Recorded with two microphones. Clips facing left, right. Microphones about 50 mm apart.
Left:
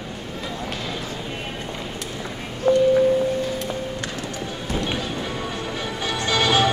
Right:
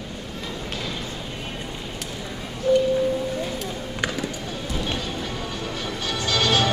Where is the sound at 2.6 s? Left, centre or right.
Left.